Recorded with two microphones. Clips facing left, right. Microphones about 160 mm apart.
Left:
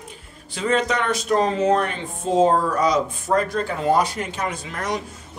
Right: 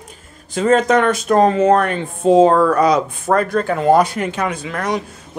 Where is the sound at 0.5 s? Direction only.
45° right (ahead or behind).